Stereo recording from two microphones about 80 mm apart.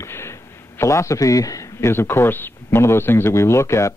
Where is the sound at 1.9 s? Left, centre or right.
Left.